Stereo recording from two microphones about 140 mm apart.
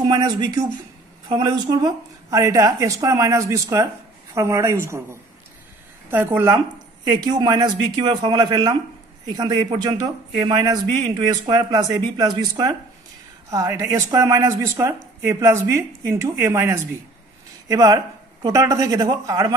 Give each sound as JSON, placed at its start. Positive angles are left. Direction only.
{"t": 0.0, "sound": "a man's voice", "side_deg": -30}
{"t": 7.1, "sound": "a man's voice", "side_deg": -30}